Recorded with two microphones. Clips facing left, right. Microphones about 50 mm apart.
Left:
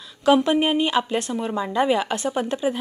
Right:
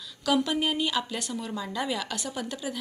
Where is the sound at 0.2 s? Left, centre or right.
Left.